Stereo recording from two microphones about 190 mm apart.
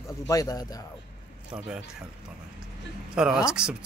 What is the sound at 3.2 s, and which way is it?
Speech, 5° right (ahead or behind).